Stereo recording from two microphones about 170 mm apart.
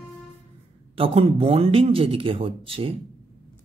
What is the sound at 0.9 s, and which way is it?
Speech, 35° right (ahead or behind).